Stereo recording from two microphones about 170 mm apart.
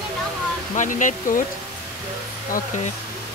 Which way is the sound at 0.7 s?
50° left (ahead or behind).